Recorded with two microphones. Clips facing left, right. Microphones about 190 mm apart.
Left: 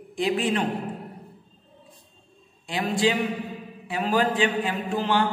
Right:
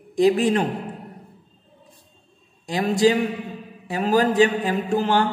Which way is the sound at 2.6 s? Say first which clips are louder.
Right 5 dB; 40° right (ahead or behind).